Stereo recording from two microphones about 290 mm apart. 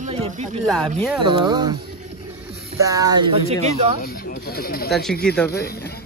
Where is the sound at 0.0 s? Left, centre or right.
Right.